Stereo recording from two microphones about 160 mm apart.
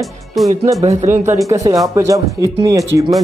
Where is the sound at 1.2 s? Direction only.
20° right (ahead or behind).